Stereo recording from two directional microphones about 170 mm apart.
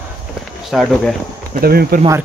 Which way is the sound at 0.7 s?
Centre (ahead or behind).